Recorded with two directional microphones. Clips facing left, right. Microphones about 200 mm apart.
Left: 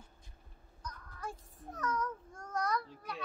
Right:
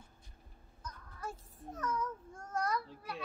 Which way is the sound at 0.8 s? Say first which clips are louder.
Even; 5° right (ahead or behind).